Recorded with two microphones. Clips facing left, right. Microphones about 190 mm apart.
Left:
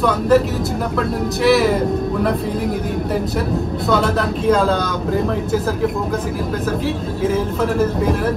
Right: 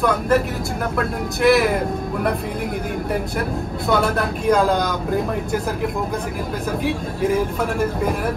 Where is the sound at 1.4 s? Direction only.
55° right (ahead or behind).